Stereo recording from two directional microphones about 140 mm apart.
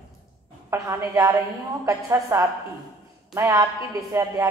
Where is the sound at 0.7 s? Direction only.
20° right (ahead or behind).